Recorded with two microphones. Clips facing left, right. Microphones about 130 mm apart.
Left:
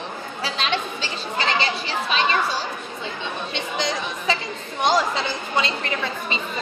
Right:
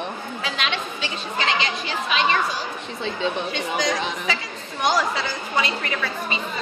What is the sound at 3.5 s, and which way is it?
A woman's voice, 25° left (ahead or behind).